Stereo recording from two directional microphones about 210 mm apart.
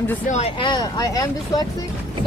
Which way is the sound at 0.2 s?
35° left (ahead or behind).